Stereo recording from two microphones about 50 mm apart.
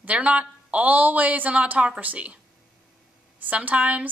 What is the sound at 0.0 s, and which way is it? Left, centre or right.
A woman's voice, right.